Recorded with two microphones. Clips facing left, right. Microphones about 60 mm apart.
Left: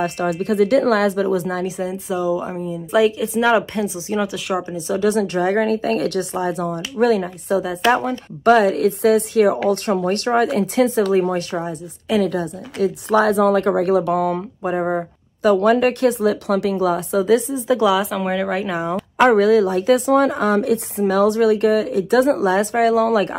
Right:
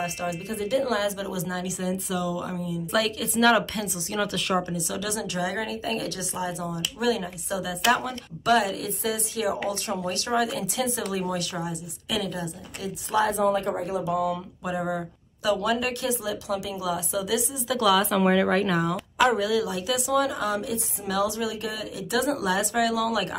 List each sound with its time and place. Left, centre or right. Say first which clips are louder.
0.0 s speech: left 9 dB; left; by 4.7 s centre
4.7 s speech: left 12 dB; left
8.5 s speech: left 9 dB; left
12.8 s speech: left 9 dB; left
14.6 s speech: left 9 dB; left
17.7 s speech: left 4 dB; left
18.1 s speech: even; centre
19.1 s speech: left 10 dB; left